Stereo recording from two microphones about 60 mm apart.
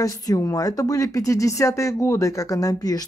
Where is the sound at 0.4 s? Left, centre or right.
Left.